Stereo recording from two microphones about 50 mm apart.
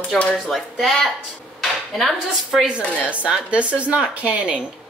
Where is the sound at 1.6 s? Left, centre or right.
Centre.